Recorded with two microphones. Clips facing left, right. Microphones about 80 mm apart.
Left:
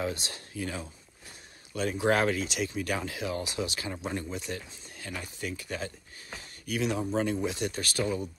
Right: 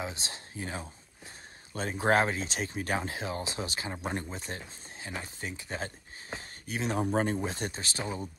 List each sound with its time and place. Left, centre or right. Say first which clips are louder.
0.0 s speech: left 4 dB; right
7.7 s speech: left 6 dB; right